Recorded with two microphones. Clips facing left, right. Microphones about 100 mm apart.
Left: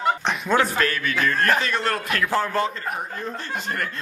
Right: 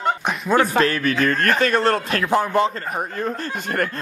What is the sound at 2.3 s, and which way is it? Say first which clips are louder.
Speech: right 6 dB; 20° right (ahead or behind).